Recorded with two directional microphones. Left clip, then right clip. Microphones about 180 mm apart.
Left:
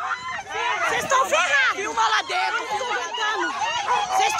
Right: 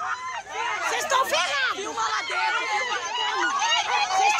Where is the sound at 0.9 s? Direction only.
5° right (ahead or behind).